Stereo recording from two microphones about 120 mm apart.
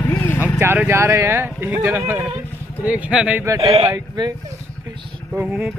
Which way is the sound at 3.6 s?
60° right (ahead or behind).